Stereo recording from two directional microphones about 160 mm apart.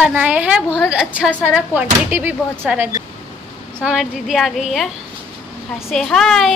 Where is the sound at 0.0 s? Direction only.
10° right (ahead or behind).